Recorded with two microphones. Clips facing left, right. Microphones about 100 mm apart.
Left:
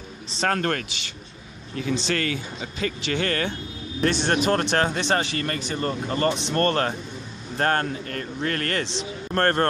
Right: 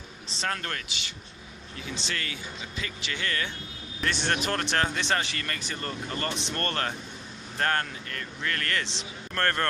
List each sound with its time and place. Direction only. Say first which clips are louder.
0.4 s speech: left 9 dB; 50° left (ahead or behind)
2.0 s speech: left 9 dB; 50° left (ahead or behind)
4.1 s speech: left 5 dB; 20° left (ahead or behind)